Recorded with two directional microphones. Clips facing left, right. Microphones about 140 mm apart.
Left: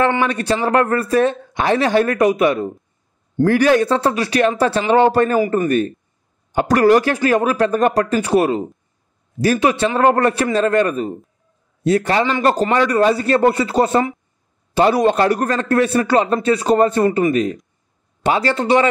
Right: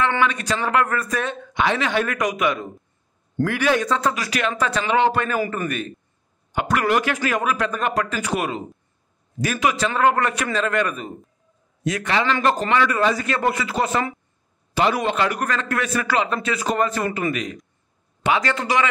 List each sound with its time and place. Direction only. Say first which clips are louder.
0.2 s speech: left 4 dB; 35° left (ahead or behind)